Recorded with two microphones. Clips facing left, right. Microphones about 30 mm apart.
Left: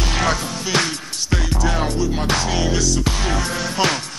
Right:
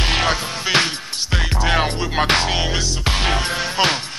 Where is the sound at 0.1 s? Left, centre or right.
Right.